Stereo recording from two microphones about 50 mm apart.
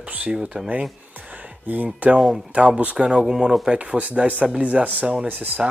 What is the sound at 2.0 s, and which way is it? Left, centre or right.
Speech, right.